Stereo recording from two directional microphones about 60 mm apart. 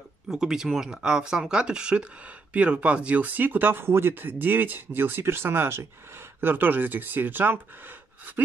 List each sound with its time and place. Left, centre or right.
0.3 s speech: centre; by 7.6 s right